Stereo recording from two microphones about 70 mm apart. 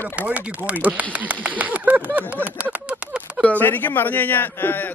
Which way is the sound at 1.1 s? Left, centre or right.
Right.